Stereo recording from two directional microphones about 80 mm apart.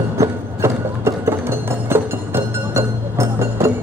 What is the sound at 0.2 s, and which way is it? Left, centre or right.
Music, right.